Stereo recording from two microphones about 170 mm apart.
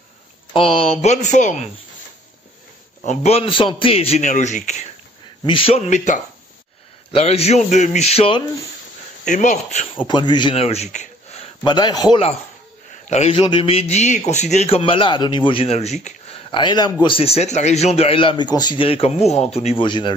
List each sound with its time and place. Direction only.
0.6 s a man's voice: 30° left (ahead or behind)
3.0 s a man's voice: 40° left (ahead or behind)
5.4 s a man's voice: 30° left (ahead or behind)
9.2 s a man's voice: 45° left (ahead or behind)
11.6 s a man's voice: 25° left (ahead or behind)
13.1 s a man's voice: 35° left (ahead or behind)
16.4 s a man's voice: 25° left (ahead or behind)